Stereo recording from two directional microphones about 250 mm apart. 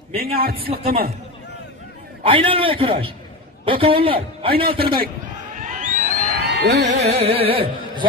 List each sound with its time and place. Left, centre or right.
0.1 s a man's voice: right
2.2 s carnatic music: right
5.6 s a sound: right
7.0 s carnatic music: right